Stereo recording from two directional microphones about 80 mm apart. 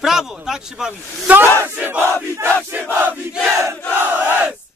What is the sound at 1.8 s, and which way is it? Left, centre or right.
Battle cry, right.